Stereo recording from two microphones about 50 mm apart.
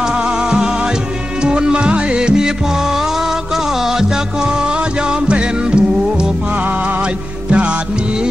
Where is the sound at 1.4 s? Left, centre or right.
Centre.